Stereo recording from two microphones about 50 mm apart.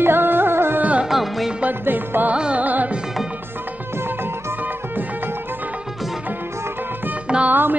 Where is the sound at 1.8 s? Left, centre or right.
Right.